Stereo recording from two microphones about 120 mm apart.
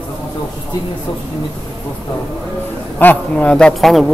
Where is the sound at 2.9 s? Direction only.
15° left (ahead or behind).